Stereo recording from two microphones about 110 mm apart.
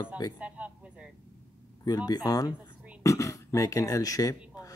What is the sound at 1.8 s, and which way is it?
Speech, 35° left (ahead or behind).